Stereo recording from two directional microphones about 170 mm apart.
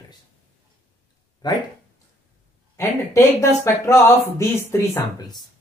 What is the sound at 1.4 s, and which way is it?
Speech, 25° left (ahead or behind).